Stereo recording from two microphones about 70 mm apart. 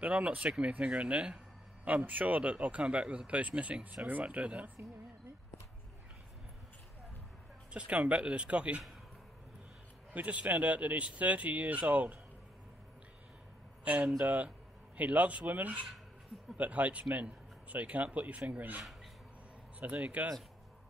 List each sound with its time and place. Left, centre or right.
0.0 s speech: right
7.7 s speech: centre
10.1 s speech: right
13.9 s speech: right
19.8 s speech: right